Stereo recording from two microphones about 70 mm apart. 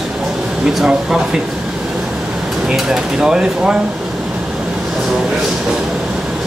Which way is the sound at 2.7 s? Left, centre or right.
Centre.